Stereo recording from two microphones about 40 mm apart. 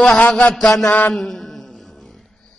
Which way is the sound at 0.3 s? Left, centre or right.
Left.